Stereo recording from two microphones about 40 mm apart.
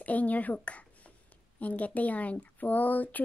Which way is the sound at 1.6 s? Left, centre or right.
Left.